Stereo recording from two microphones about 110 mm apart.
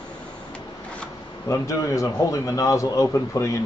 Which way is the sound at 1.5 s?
30° left (ahead or behind).